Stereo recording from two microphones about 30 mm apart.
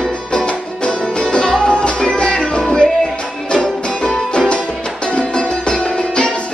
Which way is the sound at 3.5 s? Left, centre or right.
Left.